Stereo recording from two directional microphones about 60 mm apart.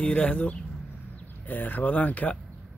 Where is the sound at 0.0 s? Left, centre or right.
Centre.